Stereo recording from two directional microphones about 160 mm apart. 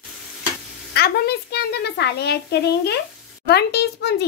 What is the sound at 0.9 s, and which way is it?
A woman's voice, 85° left.